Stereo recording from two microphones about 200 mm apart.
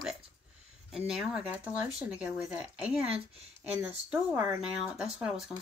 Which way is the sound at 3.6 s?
10° right (ahead or behind).